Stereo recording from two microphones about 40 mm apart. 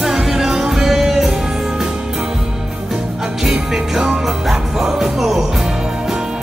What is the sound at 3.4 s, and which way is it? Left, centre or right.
Music, centre.